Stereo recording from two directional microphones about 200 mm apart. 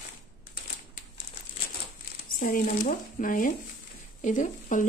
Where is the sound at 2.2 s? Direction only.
45° left (ahead or behind).